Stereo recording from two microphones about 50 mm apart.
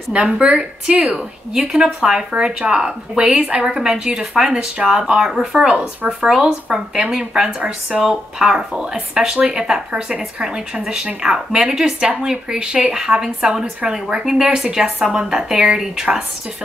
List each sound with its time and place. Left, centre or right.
0.1 s speech: centre